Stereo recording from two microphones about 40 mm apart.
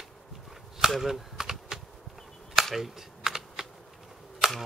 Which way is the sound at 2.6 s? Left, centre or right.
Centre.